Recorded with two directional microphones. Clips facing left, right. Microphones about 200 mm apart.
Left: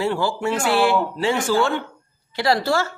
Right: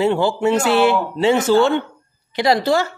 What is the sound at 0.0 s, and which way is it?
A woman's voice, 20° right (ahead or behind).